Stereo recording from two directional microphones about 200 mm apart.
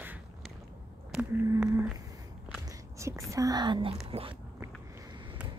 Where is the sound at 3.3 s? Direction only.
20° right (ahead or behind).